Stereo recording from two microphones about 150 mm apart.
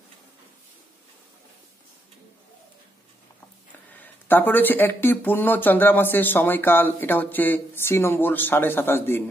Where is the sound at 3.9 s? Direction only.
10° left (ahead or behind).